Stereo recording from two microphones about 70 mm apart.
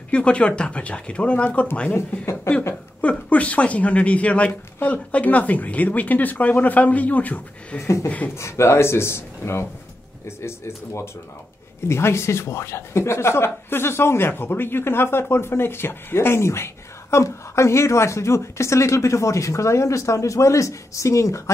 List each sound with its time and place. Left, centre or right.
0.1 s speech: centre
1.9 s speech: left
3.0 s speech: centre
7.8 s speech: left